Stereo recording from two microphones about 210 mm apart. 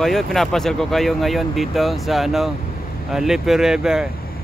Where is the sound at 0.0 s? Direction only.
Centre (ahead or behind).